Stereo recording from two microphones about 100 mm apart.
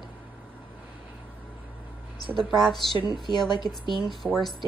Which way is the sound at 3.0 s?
45° left (ahead or behind).